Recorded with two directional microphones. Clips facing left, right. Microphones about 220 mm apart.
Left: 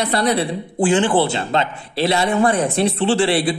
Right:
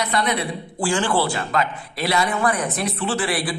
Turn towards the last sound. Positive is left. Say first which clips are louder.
# left 7 dB
turn(degrees=25)  # may be behind; listen again after turning